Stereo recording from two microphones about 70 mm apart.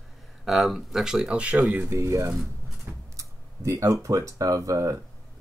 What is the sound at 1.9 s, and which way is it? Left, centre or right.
Speech, right.